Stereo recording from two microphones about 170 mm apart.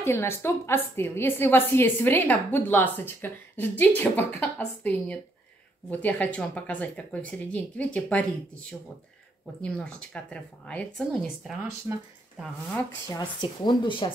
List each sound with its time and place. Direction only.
0.0 s a woman's voice: 15° left (ahead or behind)
9.6 s a woman's voice: 5° left (ahead or behind)
11.9 s speech: 15° right (ahead or behind)
13.4 s a woman's voice: 30° left (ahead or behind)